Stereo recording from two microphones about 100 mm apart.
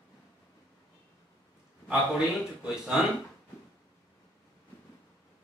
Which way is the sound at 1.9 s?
10° right (ahead or behind).